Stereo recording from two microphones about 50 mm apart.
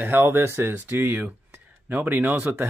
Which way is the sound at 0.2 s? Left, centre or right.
Right.